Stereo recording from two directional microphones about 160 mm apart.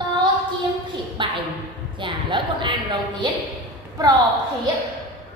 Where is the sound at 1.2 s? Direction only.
30° right (ahead or behind).